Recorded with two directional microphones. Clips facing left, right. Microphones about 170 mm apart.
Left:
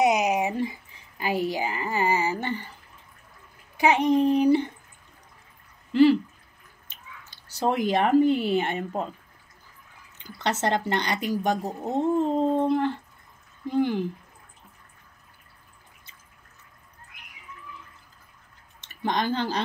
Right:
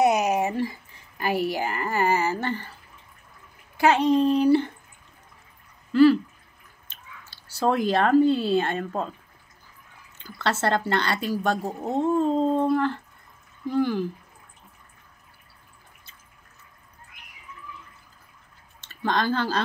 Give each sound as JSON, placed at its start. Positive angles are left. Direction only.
{"t": 0.0, "sound": "a sound", "side_deg": 15}
{"t": 1.2, "sound": "speech", "side_deg": 15}
{"t": 5.9, "sound": "speech", "side_deg": 20}
{"t": 10.1, "sound": "speech", "side_deg": 15}
{"t": 18.8, "sound": "speech", "side_deg": 15}